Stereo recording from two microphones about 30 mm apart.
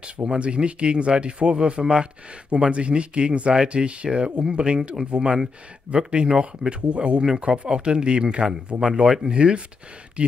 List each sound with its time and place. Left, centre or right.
0.0 s speech: right